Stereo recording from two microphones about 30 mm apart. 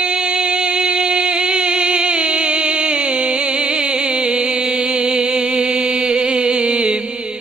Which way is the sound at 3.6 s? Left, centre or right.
Right.